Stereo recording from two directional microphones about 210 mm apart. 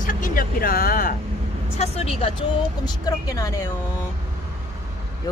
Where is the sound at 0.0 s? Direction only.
40° left (ahead or behind).